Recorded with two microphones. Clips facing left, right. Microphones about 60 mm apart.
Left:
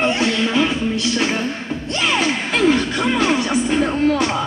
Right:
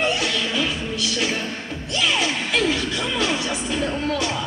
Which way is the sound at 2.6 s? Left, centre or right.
Left.